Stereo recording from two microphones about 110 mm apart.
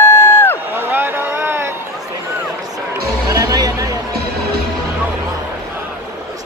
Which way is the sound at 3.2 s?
35° right (ahead or behind).